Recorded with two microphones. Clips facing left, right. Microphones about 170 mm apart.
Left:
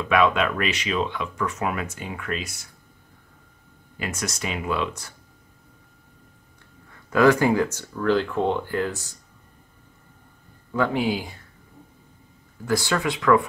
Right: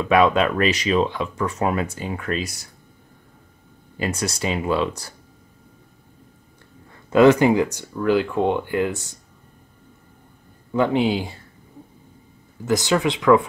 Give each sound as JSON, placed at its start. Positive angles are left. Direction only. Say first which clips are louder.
{"t": 0.0, "sound": "speech", "louder": "right 4 dB", "side_deg": -35}
{"t": 4.0, "sound": "speech", "louder": "right 5 dB", "side_deg": -30}
{"t": 7.1, "sound": "speech", "louder": "right 4 dB", "side_deg": -20}
{"t": 10.7, "sound": "speech", "louder": "right 4 dB", "side_deg": -20}
{"t": 12.6, "sound": "speech", "louder": "right 4 dB", "side_deg": -20}